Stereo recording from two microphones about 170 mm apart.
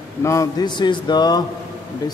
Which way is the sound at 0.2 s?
20° left (ahead or behind).